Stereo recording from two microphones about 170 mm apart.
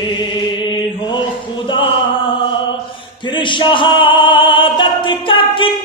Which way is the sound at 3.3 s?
30° left (ahead or behind).